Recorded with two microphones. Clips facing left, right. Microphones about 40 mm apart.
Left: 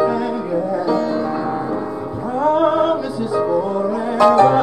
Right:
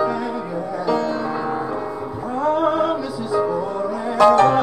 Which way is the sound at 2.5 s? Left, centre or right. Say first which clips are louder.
Left 3 dB; left.